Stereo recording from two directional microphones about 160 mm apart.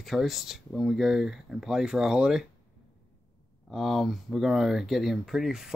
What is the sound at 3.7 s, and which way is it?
Speech, centre (ahead or behind).